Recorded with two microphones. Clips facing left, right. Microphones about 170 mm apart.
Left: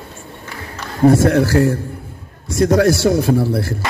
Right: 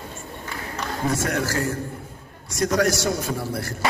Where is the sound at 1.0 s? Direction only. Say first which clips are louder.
Left 13 dB; 35° left (ahead or behind).